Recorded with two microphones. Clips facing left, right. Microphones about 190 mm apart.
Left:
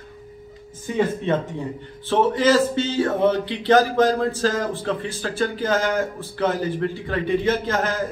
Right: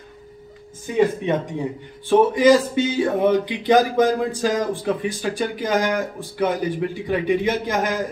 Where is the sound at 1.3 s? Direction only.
15° right (ahead or behind).